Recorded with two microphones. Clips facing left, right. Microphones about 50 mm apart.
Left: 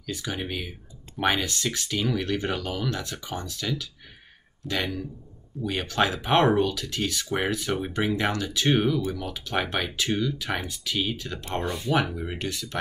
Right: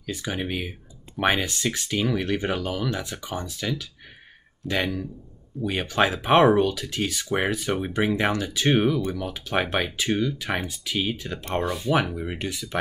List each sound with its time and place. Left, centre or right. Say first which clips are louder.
0.0 s speech: right 2 dB; centre
4.6 s speech: right 3 dB; centre
5.6 s speech: right 2 dB; centre